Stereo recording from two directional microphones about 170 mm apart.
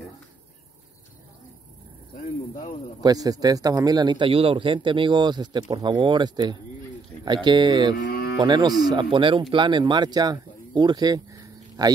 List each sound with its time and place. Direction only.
3.0 s speech: 20° right (ahead or behind)
8.0 s moo: 70° left (ahead or behind)
8.4 s speech: 25° right (ahead or behind)